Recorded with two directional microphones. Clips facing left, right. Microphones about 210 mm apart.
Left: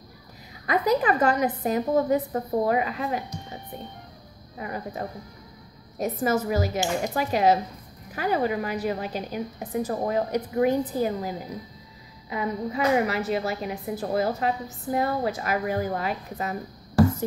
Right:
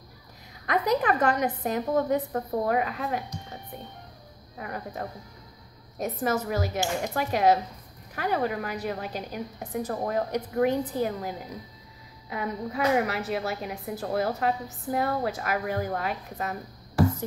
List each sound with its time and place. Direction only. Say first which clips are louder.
0.7 s a woman's voice: left 2 dB; 5° left (ahead or behind)
4.6 s a woman's voice: left 3 dB; 5° left (ahead or behind)